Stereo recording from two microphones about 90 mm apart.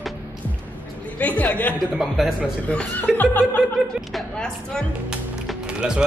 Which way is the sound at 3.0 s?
20° left (ahead or behind).